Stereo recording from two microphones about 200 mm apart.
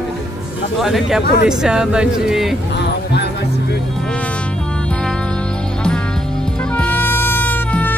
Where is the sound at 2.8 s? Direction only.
60° left (ahead or behind).